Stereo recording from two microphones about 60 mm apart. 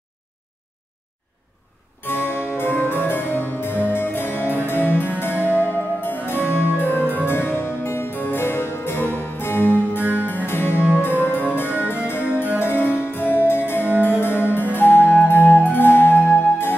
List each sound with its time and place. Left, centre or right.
2.0 s harpsichord: left
4.6 s music: left
11.8 s music: right
12.6 s harpsichord: left
14.0 s flute: left